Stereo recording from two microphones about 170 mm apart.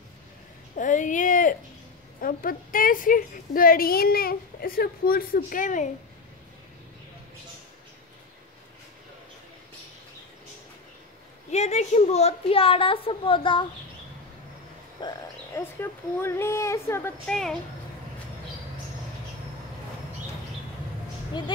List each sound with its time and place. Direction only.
0.7 s a woman's voice: 50° left (ahead or behind)
11.5 s a child's voice: 40° left (ahead or behind)
15.0 s a sound: 25° left (ahead or behind)
15.6 s a woman's voice: 15° left (ahead or behind)
17.3 s a woman's voice: 5° left (ahead or behind)
21.3 s speech: 25° left (ahead or behind)